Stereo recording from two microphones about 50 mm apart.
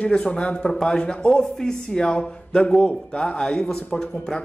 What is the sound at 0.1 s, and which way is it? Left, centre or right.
Speech, left.